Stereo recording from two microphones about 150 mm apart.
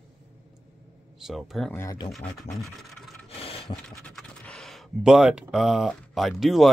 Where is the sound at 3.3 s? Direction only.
40° left (ahead or behind).